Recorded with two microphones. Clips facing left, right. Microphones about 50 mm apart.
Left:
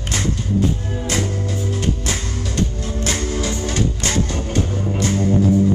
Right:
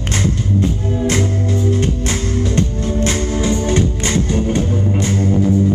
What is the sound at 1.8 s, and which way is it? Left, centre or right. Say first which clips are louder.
Music: right 4 dB; right.